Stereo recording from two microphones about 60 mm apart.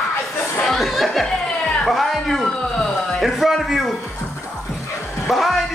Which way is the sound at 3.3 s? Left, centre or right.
Centre.